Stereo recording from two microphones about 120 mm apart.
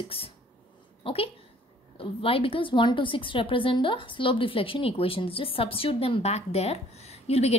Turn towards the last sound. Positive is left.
turn(degrees=60)  # may be behind; listen again after turning